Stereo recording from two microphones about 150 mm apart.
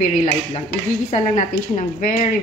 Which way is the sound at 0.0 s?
55° left (ahead or behind).